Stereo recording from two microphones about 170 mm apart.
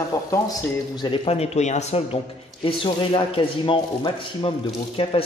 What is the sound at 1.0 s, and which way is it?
Speech, 30° left (ahead or behind).